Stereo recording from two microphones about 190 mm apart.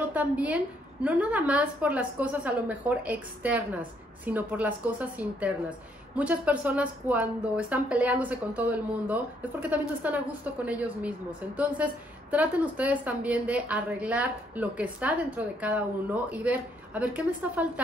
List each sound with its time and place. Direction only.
0.1 s a woman's voice: 5° right (ahead or behind)
6.1 s a woman's voice: 10° right (ahead or behind)